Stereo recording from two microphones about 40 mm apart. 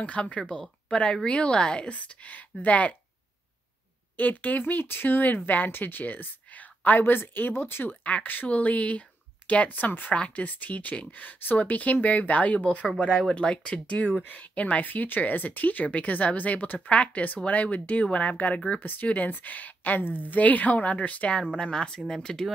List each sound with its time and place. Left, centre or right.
0.0 s speech: left
1.9 s speech: left
4.2 s speech: left
7.0 s speech: left
7.9 s speech: left
8.5 s speech: left
9.7 s speech: left
10.1 s speech: left
18.8 s speech: left
19.0 s speech: left
22.0 s speech: centre